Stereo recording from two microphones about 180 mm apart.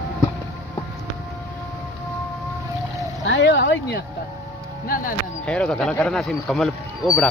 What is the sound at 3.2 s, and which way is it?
Speech, 80° left.